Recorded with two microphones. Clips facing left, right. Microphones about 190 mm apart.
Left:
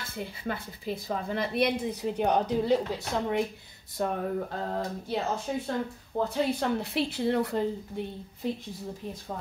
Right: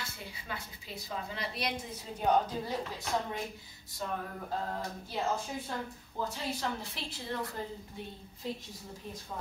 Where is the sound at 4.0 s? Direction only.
60° left (ahead or behind).